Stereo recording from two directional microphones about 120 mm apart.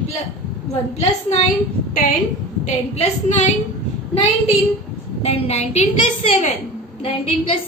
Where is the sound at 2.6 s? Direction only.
70° left (ahead or behind).